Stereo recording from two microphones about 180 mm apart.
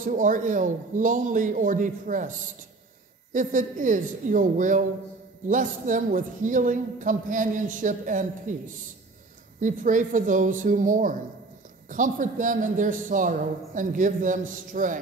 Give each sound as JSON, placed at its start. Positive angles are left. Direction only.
{"t": 0.0, "sound": "a woman's voice", "side_deg": -45}
{"t": 3.3, "sound": "a woman's voice", "side_deg": -45}